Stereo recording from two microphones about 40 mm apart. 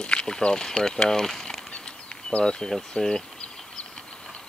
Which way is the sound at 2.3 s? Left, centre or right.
Left.